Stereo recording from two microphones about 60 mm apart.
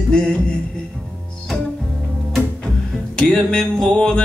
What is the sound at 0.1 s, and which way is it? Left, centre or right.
Music, centre.